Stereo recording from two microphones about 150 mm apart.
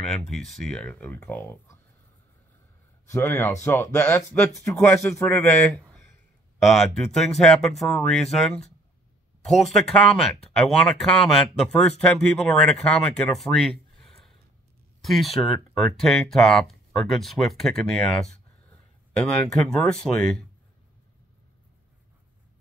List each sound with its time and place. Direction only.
0.0 s speech: 5° left (ahead or behind)
3.1 s speech: 15° left (ahead or behind)